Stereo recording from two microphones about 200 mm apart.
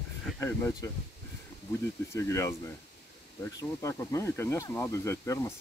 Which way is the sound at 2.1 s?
15° left (ahead or behind).